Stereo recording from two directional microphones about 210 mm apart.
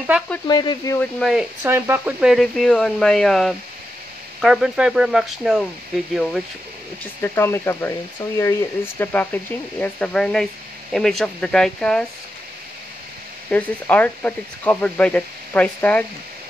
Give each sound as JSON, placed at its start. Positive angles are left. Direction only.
{"t": 0.5, "sound": "speech", "side_deg": 20}
{"t": 0.9, "sound": "speech", "side_deg": 0}
{"t": 7.2, "sound": "speech", "side_deg": 10}
{"t": 13.5, "sound": "speech", "side_deg": 5}